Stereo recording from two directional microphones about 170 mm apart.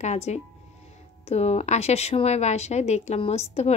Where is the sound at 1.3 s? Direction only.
40° left (ahead or behind).